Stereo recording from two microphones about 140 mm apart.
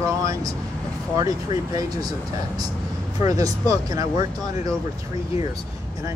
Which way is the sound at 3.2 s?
25° right (ahead or behind).